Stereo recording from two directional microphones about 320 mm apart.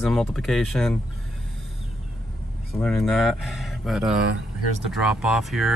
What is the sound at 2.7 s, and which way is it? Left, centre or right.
Speech, centre.